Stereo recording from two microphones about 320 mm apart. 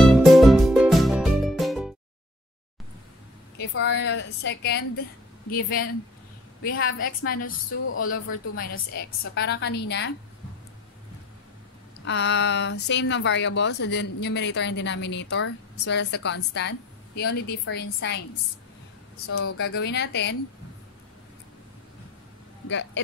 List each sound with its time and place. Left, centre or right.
0.0 s music: centre
3.5 s a woman's voice: left
9.2 s speech: left
12.0 s speech: left
19.2 s speech: left
22.7 s speech: left